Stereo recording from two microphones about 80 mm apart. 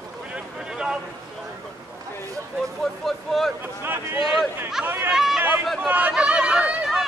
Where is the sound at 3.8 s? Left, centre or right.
Right.